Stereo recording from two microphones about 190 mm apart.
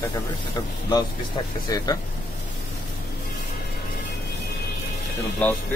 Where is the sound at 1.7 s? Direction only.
20° left (ahead or behind).